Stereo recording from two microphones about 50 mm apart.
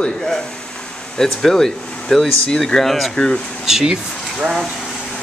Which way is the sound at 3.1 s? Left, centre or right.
Centre.